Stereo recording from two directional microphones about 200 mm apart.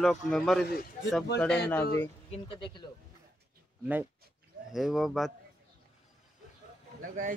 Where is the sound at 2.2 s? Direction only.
30° left (ahead or behind).